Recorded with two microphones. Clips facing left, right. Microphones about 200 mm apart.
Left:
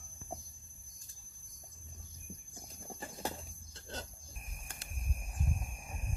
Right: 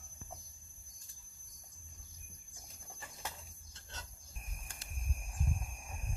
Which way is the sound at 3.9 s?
35° left (ahead or behind).